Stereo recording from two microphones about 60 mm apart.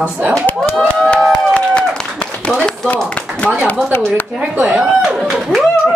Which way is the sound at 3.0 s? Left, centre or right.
Centre.